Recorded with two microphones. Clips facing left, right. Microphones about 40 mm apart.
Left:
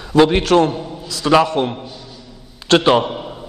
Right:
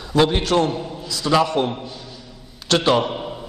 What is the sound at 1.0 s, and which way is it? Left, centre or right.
Speech, left.